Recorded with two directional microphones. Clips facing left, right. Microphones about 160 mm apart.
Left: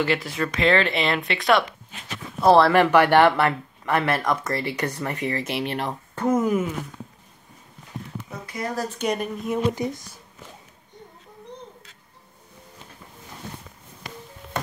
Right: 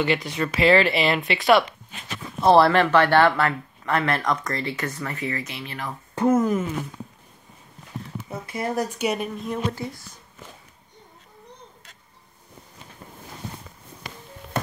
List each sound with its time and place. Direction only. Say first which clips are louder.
0.0 s speech: even; centre (ahead or behind)
2.7 s speech: left 2 dB; 15° left (ahead or behind)
5.4 s speech: left 8 dB; 65° left (ahead or behind)
6.3 s speech: left 2 dB; 10° left (ahead or behind)
8.3 s speech: right 3 dB; 25° right (ahead or behind)
8.8 s speech: even; 10° right (ahead or behind)
9.5 s speech: left 7 dB; 15° left (ahead or behind)